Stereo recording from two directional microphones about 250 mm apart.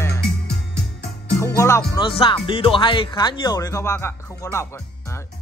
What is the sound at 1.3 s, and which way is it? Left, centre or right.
Music, centre.